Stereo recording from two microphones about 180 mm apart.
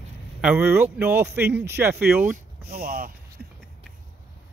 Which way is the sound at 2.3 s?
55° right (ahead or behind).